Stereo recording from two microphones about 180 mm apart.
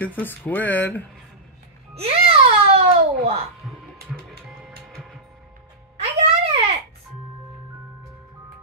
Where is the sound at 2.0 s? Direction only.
35° right (ahead or behind).